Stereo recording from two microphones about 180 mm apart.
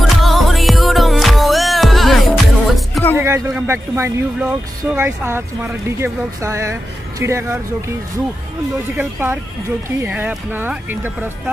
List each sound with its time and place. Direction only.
0.0 s music: centre (ahead or behind)
3.2 s a sound: 15° right (ahead or behind)
3.5 s speech: 15° right (ahead or behind)
8.9 s speech: 10° right (ahead or behind)